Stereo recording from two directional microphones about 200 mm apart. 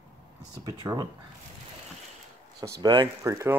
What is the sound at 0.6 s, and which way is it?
Speech, 20° right (ahead or behind).